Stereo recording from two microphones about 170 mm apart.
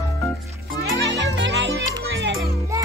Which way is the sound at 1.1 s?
90° right.